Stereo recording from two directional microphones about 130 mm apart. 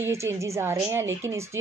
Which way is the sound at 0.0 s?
20° right (ahead or behind).